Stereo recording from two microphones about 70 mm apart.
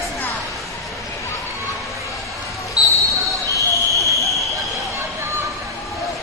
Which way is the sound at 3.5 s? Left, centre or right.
Left.